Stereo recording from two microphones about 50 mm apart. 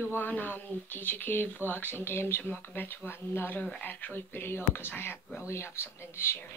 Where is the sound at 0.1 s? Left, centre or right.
Left.